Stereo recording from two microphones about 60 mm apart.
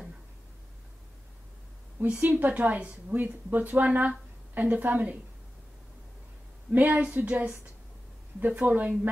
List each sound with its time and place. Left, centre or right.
2.1 s speech: right
6.7 s speech: right